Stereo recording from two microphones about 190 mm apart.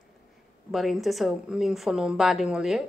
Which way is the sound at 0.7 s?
Centre (ahead or behind).